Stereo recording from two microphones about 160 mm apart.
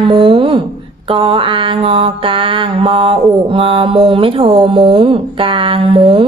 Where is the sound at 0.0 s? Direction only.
30° right (ahead or behind).